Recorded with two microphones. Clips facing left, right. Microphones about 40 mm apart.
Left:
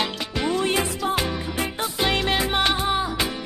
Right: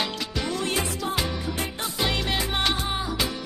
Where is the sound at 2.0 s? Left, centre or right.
Left.